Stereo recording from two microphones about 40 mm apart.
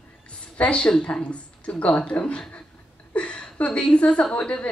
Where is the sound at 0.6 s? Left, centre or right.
Left.